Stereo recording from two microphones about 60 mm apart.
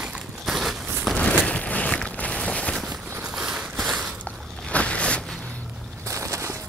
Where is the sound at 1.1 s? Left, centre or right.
Left.